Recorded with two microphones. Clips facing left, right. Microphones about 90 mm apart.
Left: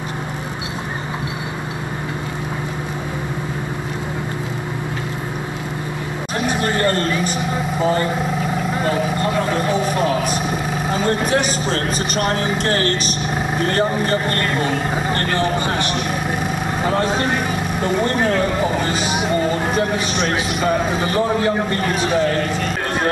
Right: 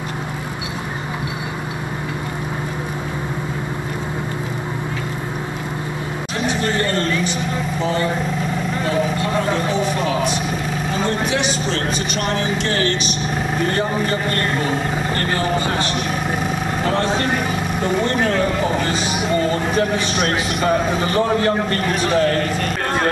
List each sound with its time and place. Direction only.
6.4 s a sound: 45° left (ahead or behind)
9.7 s a sound: 5° left (ahead or behind)
10.0 s vehicle: 45° left (ahead or behind)
15.1 s vehicle: 20° left (ahead or behind)
16.8 s vehicle: 10° left (ahead or behind)
19.7 s a man's voice: centre (ahead or behind)